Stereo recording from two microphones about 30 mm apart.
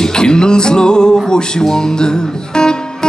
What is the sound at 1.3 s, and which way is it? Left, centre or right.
Speech, left.